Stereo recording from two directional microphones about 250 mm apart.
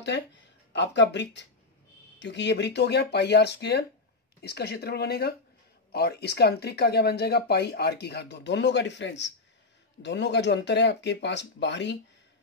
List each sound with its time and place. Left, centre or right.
0.0 s speech: left